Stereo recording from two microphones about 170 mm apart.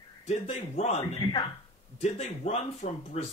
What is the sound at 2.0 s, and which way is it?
Speech, 40° left (ahead or behind).